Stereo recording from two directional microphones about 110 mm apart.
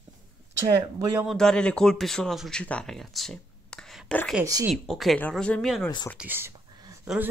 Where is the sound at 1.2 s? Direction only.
5° left (ahead or behind).